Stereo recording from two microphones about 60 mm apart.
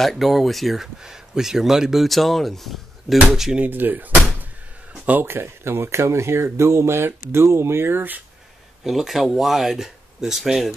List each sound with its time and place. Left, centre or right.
0.0 s speech: centre
3.5 s speech: right
4.9 s a sound: right
5.2 s speech: right
8.8 s speech: centre